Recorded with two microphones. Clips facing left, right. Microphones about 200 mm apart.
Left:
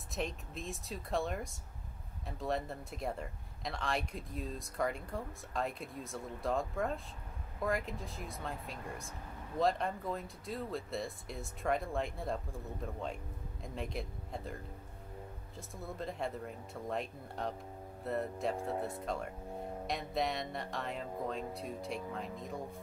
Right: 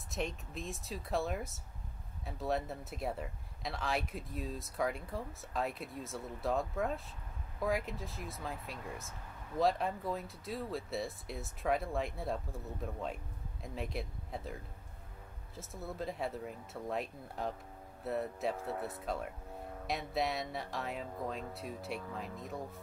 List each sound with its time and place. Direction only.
0.1 s speech: centre (ahead or behind)
18.6 s speech: 20° left (ahead or behind)
18.9 s speech: centre (ahead or behind)